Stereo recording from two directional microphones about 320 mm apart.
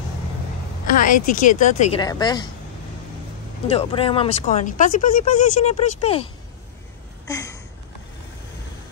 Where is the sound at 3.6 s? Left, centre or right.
Centre.